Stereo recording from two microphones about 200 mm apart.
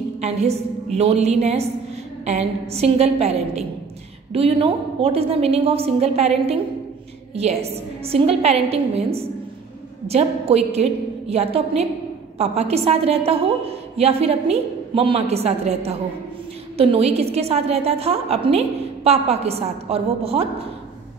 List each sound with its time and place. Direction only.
0.2 s a woman's voice: 35° right (ahead or behind)
8.0 s a woman's voice: 30° right (ahead or behind)